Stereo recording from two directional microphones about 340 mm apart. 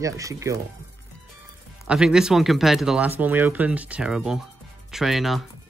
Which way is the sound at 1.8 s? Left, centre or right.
Centre.